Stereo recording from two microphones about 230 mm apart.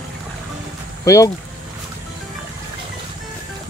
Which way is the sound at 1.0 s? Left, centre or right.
Centre.